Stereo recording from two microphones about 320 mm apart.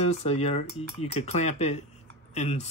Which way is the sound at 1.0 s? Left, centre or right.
Centre.